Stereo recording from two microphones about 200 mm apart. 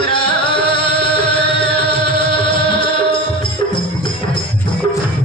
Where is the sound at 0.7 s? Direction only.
25° left (ahead or behind).